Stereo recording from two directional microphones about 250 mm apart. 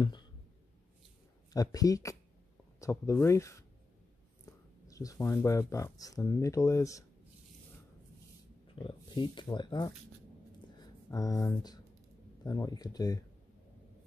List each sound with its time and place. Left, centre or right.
1.5 s speech: centre
8.6 s speech: centre